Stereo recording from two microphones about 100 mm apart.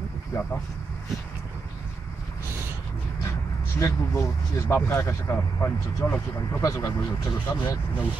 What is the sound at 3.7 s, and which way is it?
Speech, 30° left (ahead or behind).